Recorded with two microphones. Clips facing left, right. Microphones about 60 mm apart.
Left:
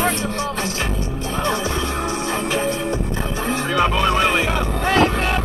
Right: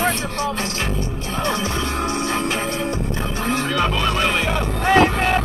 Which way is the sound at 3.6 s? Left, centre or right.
Centre.